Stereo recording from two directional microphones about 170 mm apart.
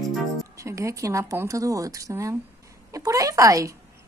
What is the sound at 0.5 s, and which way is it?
A woman's voice, 15° right (ahead or behind).